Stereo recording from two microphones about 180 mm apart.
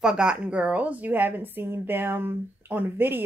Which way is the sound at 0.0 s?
5° right (ahead or behind).